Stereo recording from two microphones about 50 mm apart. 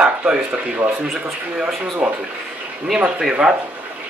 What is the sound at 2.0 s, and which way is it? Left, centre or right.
Speech, centre.